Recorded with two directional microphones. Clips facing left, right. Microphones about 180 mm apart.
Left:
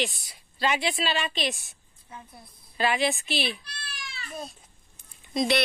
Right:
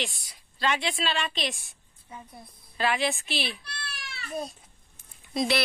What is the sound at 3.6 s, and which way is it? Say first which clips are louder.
Cat: right 1 dB; 65° right (ahead or behind).